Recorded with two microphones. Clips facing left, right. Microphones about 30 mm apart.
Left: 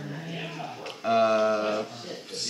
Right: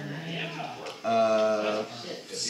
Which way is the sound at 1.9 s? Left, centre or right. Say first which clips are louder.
Even; centre.